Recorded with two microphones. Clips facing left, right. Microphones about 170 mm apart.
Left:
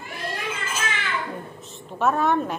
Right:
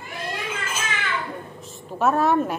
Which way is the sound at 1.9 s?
5° right (ahead or behind).